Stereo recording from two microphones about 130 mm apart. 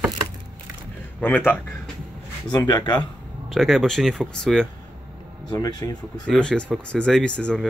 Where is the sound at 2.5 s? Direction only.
35° left (ahead or behind).